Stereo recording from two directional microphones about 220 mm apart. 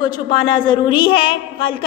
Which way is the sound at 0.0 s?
20° left (ahead or behind).